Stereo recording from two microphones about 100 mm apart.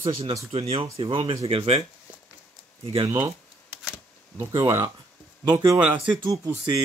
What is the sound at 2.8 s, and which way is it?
Speech, 65° right (ahead or behind).